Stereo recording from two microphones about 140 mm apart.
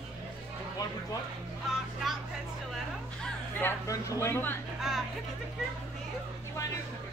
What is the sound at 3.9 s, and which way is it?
Speech, 20° left (ahead or behind).